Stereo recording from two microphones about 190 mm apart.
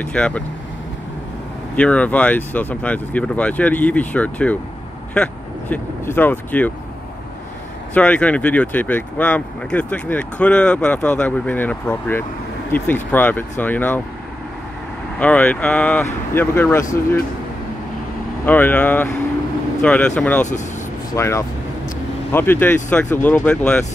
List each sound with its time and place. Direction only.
0.0 s speech: 5° left (ahead or behind)
1.8 s speech: 5° left (ahead or behind)
7.9 s speech: 5° left (ahead or behind)
15.1 s speech: 10° left (ahead or behind)
18.4 s speech: 10° left (ahead or behind)